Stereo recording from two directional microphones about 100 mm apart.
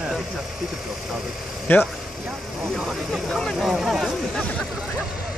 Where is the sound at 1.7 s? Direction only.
20° left (ahead or behind).